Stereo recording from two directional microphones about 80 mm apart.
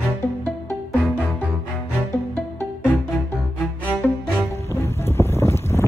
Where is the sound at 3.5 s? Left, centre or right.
Left.